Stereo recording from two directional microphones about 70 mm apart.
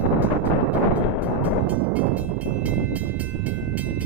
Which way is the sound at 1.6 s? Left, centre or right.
Right.